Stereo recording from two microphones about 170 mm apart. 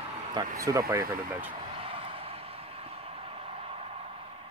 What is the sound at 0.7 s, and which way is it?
Speech, 20° right (ahead or behind).